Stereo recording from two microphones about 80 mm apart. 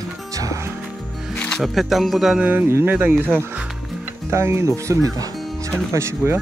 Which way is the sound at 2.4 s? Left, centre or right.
Right.